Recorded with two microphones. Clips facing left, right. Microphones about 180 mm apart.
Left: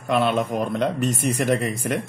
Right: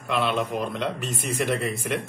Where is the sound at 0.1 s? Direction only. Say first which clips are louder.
Left 4 dB; 45° left (ahead or behind).